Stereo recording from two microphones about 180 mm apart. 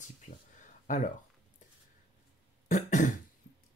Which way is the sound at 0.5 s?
45° left (ahead or behind).